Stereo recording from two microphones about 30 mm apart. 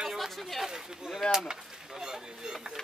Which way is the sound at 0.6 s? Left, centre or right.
Right.